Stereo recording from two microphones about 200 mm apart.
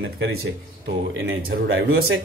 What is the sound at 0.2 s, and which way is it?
Speech, 50° right (ahead or behind).